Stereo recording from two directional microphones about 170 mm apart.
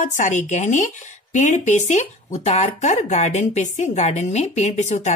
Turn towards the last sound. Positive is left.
turn(degrees=45)  # may be behind; listen again after turning